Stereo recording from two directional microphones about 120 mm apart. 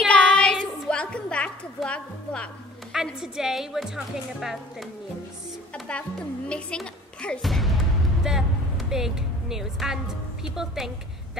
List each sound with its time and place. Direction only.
0.1 s a sound: 10° left (ahead or behind)
2.9 s a woman's voice: 5° right (ahead or behind)
6.5 s speech: 10° left (ahead or behind)